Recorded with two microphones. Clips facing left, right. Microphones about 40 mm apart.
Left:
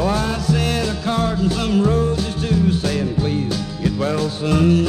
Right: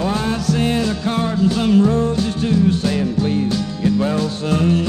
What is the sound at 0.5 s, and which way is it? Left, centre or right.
Music, right.